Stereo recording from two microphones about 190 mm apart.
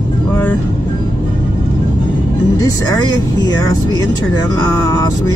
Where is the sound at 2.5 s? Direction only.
20° left (ahead or behind).